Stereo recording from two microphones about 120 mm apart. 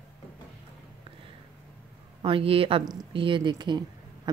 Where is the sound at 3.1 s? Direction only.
45° right (ahead or behind).